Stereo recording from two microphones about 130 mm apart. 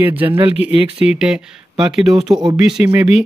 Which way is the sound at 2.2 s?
30° right (ahead or behind).